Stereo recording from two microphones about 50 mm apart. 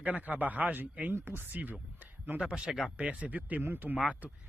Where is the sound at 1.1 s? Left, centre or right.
Right.